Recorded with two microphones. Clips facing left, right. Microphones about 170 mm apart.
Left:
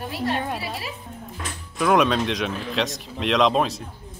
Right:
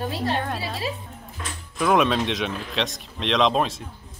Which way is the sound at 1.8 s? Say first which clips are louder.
Left 1 dB; centre (ahead or behind).